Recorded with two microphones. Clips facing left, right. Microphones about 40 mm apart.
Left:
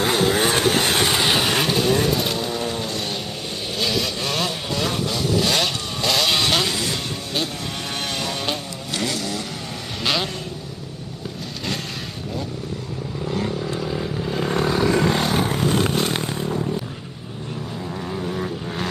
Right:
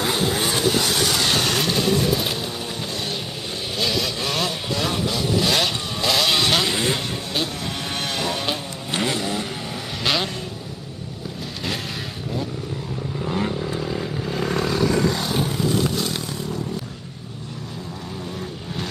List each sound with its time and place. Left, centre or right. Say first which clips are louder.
0.0 s vehicle: left 3 dB; left; by 1.8 s centre
2.0 s bird: left 1 dB; centre
3.8 s vehicle: even; centre
6.7 s a sound: right 3 dB; right
8.2 s vehicle: right 2 dB; centre
8.9 s vehicle: right 2 dB; right
10.0 s vehicle: even; centre
13.2 s vehicle: even; centre
13.7 s vehicle: left 1 dB; centre
14.5 s vehicle: left 2 dB; centre
15.0 s vehicle: left 2 dB; left